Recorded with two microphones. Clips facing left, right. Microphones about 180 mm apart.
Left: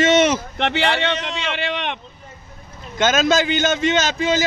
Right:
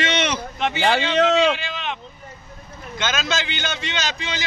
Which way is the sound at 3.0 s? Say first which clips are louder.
Left 8 dB; 45° left (ahead or behind).